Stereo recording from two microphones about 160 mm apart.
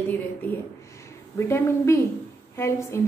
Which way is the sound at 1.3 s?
15° left (ahead or behind).